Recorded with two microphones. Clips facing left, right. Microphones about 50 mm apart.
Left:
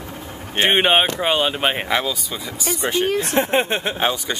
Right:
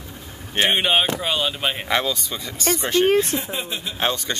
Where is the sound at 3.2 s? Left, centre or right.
Left.